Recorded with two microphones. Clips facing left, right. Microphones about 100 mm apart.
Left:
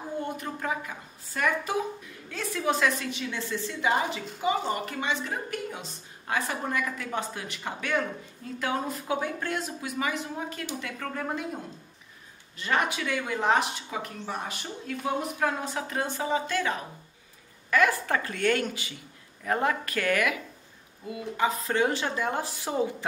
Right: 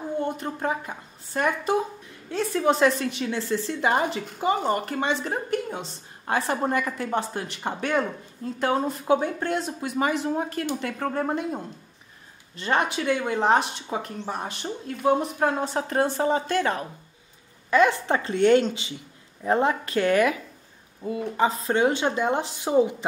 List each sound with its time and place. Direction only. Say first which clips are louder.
0.2 s a woman's voice: right 5 dB; 30° right (ahead or behind)
12.5 s a woman's voice: right 3 dB; 30° right (ahead or behind)
15.9 s a woman's voice: right 6 dB; 45° right (ahead or behind)
17.6 s speech: right 4 dB; 25° right (ahead or behind)